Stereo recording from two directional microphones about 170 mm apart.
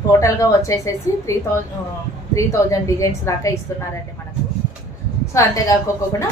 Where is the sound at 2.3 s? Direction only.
20° left (ahead or behind).